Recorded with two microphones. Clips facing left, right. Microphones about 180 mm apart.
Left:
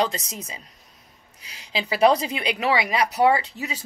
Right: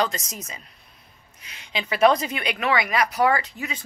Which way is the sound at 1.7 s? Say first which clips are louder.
Even; 30° left (ahead or behind).